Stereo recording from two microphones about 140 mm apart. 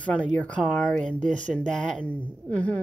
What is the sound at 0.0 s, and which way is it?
Speech, 10° left (ahead or behind).